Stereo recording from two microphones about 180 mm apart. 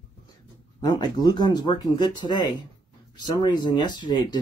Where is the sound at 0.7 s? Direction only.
25° left (ahead or behind).